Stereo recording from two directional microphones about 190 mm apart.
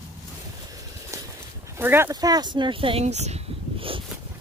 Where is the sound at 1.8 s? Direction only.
10° right (ahead or behind); by 4.0 s 30° right (ahead or behind).